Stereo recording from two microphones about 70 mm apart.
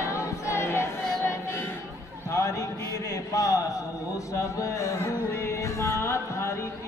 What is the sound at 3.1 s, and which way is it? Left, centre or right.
Speech, left.